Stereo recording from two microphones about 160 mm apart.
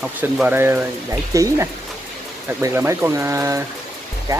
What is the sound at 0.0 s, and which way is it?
Speech, 10° right (ahead or behind).